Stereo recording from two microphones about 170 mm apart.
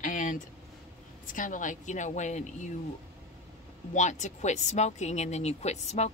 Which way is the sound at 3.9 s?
45° left (ahead or behind).